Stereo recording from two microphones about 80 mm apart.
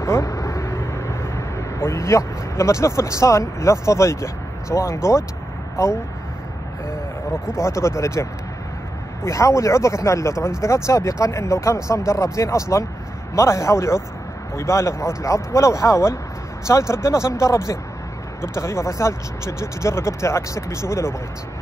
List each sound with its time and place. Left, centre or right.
0.0 s vehicle: left
7.5 s speech: left